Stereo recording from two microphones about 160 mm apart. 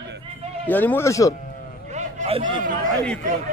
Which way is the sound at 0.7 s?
10° left (ahead or behind).